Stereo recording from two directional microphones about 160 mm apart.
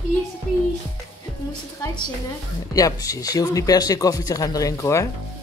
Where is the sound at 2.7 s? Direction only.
20° left (ahead or behind).